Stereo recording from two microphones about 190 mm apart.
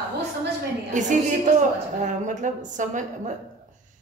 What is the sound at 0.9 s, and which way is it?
Speech, 40° right (ahead or behind).